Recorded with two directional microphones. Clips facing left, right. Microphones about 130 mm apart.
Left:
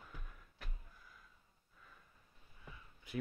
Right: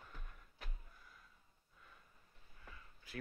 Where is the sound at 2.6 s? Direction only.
20° left (ahead or behind).